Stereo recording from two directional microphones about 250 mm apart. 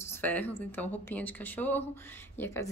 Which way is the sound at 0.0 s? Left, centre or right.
Centre.